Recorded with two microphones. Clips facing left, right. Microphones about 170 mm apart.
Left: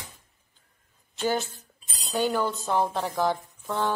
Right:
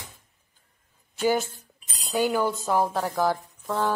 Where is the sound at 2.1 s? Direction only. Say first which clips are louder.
Right 2 dB; 10° right (ahead or behind).